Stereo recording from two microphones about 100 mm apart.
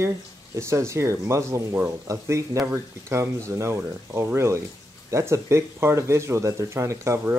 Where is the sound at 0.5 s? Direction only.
30° right (ahead or behind).